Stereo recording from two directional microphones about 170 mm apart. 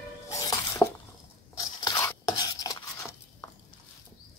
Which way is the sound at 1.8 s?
20° left (ahead or behind).